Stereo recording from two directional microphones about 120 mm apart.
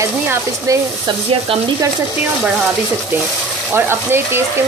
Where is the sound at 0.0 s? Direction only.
25° right (ahead or behind).